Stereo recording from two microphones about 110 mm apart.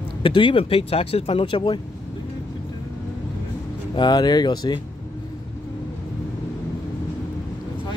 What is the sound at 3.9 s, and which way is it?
Speech, 40° left (ahead or behind).